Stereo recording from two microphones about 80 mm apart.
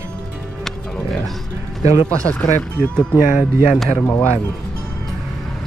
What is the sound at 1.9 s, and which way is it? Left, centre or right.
Speech, right.